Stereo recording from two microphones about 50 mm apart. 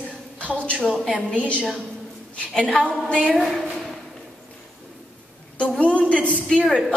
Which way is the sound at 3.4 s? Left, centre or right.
Centre.